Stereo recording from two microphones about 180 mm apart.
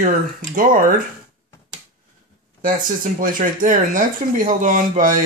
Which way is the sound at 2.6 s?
50° right (ahead or behind).